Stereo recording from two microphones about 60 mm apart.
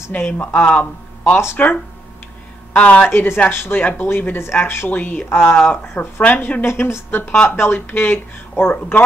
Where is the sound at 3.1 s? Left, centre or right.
Left.